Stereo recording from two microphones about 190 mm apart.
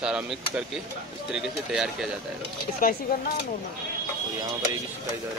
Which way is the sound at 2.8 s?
50° left (ahead or behind).